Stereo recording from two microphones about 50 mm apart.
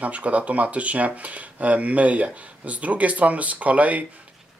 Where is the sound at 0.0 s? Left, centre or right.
Right.